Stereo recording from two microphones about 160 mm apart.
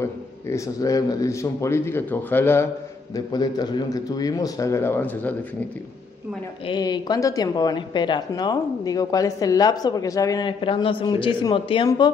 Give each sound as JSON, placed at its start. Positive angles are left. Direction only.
{"t": 0.0, "sound": "a man's voice", "side_deg": 20}
{"t": 3.3, "sound": "a woman's voice", "side_deg": 25}
{"t": 6.6, "sound": "a woman's voice", "side_deg": 25}
{"t": 10.6, "sound": "speech", "side_deg": 30}